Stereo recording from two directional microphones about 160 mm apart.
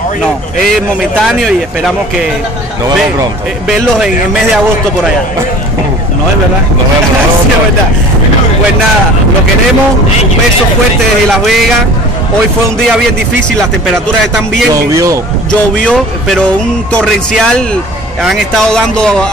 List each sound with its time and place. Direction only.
1.2 s speech: 5° right (ahead or behind)
11.2 s speech: centre (ahead or behind)
14.9 s speech: 20° right (ahead or behind)
15.8 s speech: 5° left (ahead or behind)